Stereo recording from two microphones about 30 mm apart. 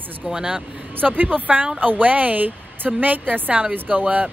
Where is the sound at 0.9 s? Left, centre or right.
Right.